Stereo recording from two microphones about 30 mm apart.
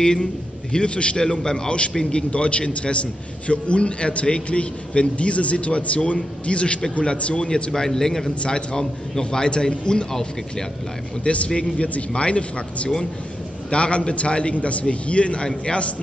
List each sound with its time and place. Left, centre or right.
0.0 s a man's voice: left
1.3 s a man's voice: left
2.0 s a man's voice: left
7.4 s a man's voice: left
8.4 s a man's voice: left
11.2 s a man's voice: left
15.4 s a man's voice: left